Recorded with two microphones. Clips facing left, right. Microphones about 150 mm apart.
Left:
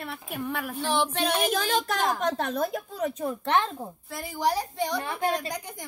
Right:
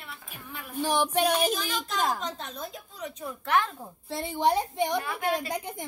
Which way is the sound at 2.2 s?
65° left (ahead or behind).